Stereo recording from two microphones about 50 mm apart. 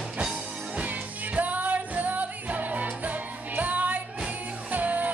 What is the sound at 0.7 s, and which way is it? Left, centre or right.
Music, right.